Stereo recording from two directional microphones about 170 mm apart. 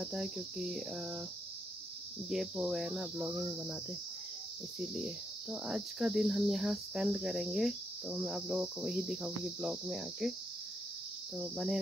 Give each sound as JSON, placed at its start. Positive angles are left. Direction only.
{"t": 0.0, "sound": "speech", "side_deg": -5}
{"t": 2.2, "sound": "speech", "side_deg": 0}
{"t": 4.7, "sound": "speech", "side_deg": -5}
{"t": 11.3, "sound": "speech", "side_deg": -5}